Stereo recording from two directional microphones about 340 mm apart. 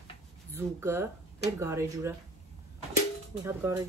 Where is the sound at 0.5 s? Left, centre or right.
Centre.